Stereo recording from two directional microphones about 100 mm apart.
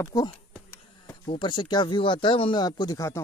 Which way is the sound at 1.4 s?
50° left (ahead or behind).